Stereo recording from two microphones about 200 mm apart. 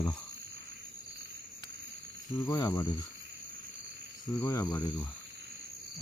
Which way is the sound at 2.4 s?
15° left (ahead or behind).